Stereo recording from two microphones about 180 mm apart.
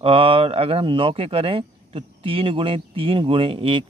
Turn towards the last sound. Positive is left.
turn(degrees=-30)  # may be behind; listen again after turning